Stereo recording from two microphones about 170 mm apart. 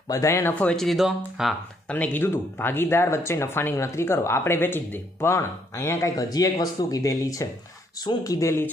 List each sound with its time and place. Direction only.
0.1 s speech: 15° left (ahead or behind)